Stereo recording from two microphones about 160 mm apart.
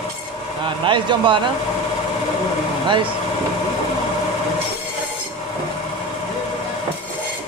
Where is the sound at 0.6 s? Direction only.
30° right (ahead or behind).